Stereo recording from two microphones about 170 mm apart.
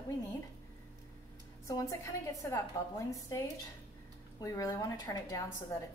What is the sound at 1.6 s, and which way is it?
A woman's voice, 20° left (ahead or behind).